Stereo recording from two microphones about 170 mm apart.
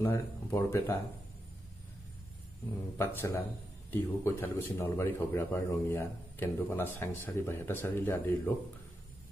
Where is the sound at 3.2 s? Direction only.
15° left (ahead or behind).